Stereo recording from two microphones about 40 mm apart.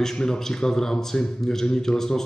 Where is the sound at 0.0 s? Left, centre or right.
Centre.